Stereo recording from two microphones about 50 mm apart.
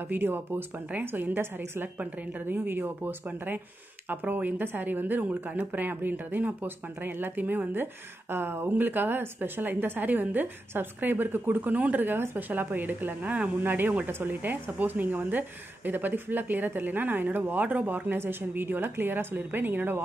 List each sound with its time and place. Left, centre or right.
0.1 s a woman's voice: right
8.6 s a woman's voice: right
18.1 s a woman's voice: right
18.5 s a woman's voice: right